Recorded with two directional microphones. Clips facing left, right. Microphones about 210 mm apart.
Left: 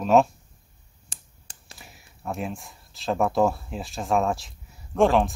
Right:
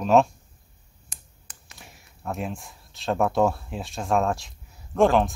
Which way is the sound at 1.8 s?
Centre (ahead or behind).